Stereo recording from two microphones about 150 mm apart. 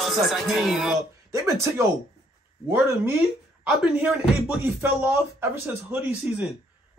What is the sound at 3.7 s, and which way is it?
Speech, 5° right (ahead or behind).